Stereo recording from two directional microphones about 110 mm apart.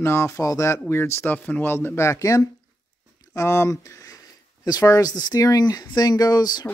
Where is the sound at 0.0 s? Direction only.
25° left (ahead or behind).